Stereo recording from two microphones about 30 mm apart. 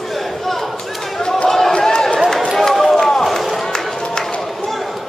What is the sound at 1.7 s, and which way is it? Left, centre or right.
Run, left.